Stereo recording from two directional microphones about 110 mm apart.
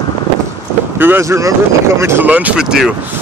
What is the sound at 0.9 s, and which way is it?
Speech, 20° right (ahead or behind).